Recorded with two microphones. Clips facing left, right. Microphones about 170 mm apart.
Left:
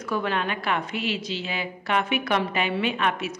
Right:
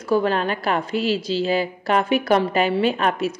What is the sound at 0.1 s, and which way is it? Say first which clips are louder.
A woman's voice: right 7 dB; 35° right (ahead or behind).